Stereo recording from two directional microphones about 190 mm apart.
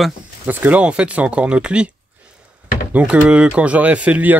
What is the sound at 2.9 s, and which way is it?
Speech, 5° right (ahead or behind).